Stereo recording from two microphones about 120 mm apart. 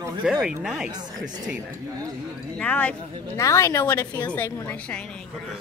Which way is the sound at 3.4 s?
25° left (ahead or behind).